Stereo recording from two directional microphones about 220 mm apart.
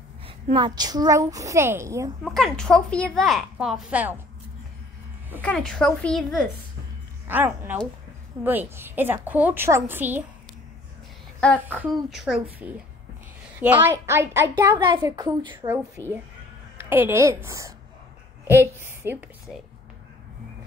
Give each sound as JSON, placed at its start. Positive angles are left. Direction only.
{"t": 0.5, "sound": "a woman's voice", "side_deg": -20}
{"t": 2.2, "sound": "a woman's voice", "side_deg": 0}
{"t": 5.4, "sound": "a woman's voice", "side_deg": 5}
{"t": 7.2, "sound": "a woman's voice", "side_deg": -10}
{"t": 11.6, "sound": "a woman's voice", "side_deg": -5}
{"t": 13.6, "sound": "a woman's voice", "side_deg": -10}